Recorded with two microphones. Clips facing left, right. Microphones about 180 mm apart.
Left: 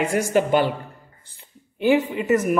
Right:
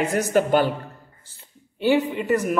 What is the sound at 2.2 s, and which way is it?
Speech, 5° left (ahead or behind).